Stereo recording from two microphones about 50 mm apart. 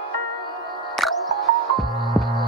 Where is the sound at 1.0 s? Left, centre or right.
Centre.